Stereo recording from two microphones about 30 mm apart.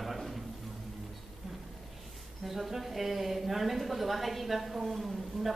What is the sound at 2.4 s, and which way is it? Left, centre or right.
A woman's voice, centre.